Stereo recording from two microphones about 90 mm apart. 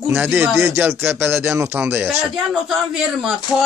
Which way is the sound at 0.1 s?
15° right (ahead or behind).